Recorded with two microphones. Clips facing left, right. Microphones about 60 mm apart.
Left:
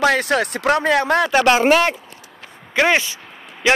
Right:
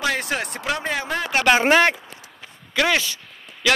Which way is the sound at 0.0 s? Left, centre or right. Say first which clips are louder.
Left 7 dB; left.